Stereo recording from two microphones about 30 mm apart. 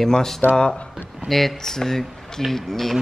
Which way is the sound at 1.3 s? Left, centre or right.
Centre.